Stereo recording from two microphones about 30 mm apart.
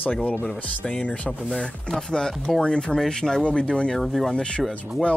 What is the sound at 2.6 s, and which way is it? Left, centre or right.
Speech, left.